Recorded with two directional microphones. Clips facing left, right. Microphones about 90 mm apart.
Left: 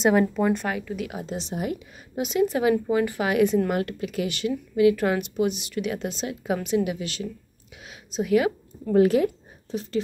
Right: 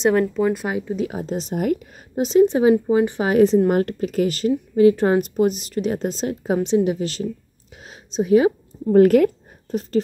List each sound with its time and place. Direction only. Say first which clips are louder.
0.0 s speech: right 3 dB; 5° left (ahead or behind)
0.7 s speech: right 5 dB; 25° right (ahead or behind); by 2.2 s 50° right (ahead or behind)
2.2 s speech: right 7 dB; 30° right (ahead or behind)
7.7 s a sound: right 2 dB; 35° right (ahead or behind)
8.1 s a woman's voice: right 6 dB; 30° right (ahead or behind)
8.9 s a woman's voice: right 6 dB; 55° right (ahead or behind)